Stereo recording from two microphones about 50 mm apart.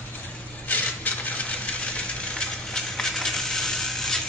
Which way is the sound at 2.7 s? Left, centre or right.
Centre.